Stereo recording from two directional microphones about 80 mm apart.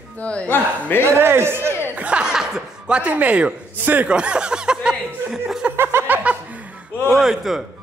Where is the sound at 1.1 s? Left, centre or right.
Right.